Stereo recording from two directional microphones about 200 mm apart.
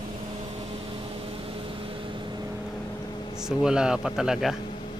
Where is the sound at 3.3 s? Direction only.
5° right (ahead or behind).